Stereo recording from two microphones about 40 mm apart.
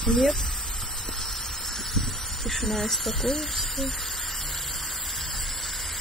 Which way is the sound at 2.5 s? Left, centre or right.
Centre.